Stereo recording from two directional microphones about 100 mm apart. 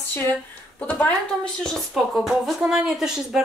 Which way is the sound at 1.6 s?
Centre (ahead or behind).